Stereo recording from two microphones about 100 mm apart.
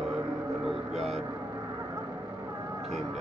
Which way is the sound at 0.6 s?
5° right (ahead or behind).